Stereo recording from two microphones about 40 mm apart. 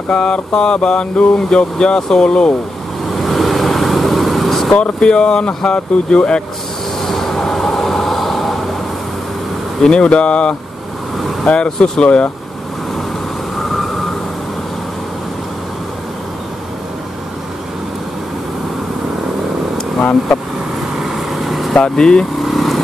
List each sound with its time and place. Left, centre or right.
0.1 s speech: left
3.3 s vehicle: centre
4.7 s speech: left
7.0 s vehicle: centre
9.8 s speech: left
20.0 s speech: left
21.0 s vehicle: centre
21.7 s speech: centre
22.4 s vehicle: centre